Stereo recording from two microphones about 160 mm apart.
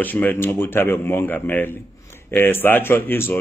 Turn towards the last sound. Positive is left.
turn(degrees=15)  # may be behind; listen again after turning